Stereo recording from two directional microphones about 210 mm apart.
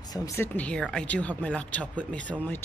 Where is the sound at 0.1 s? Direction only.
15° left (ahead or behind).